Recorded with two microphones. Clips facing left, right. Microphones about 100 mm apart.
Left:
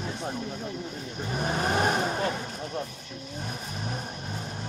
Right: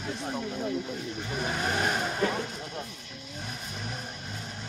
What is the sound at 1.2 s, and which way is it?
Vehicle, 40° left (ahead or behind).